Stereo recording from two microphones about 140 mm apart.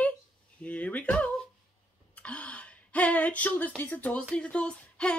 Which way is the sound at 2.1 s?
10° left (ahead or behind).